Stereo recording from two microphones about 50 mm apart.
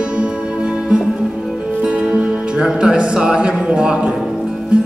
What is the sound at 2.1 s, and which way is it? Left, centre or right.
Music, centre.